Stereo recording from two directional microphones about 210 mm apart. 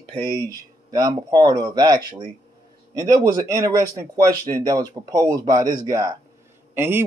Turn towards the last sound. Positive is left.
turn(degrees=-10)  # may be behind; listen again after turning